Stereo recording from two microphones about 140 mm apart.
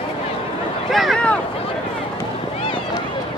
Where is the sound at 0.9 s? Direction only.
5° left (ahead or behind).